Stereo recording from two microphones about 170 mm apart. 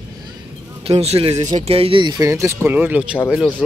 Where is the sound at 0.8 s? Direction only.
35° right (ahead or behind); by 3.5 s 5° right (ahead or behind).